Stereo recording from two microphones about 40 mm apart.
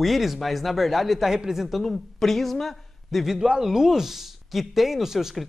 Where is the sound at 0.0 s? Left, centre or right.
Centre.